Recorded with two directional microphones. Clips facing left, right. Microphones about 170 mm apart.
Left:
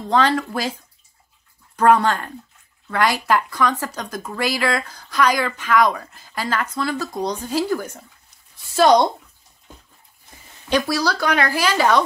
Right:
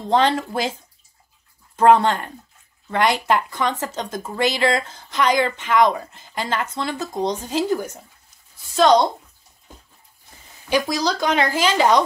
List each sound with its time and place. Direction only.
0.1 s speech: 25° right (ahead or behind)
1.8 s speech: 25° right (ahead or behind)
8.5 s a woman's voice: 10° left (ahead or behind)
10.7 s speech: 20° right (ahead or behind)